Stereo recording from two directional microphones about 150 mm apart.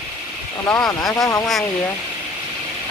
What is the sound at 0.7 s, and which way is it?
Speech, 20° left (ahead or behind).